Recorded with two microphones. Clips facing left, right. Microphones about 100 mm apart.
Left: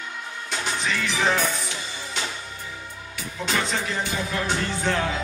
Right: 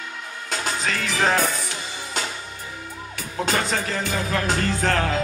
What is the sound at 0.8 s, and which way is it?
Music, 45° right (ahead or behind).